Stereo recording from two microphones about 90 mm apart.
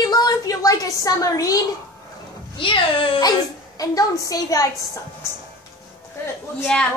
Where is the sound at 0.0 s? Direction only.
45° left (ahead or behind).